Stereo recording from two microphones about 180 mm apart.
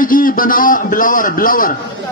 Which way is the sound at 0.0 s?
50° left (ahead or behind).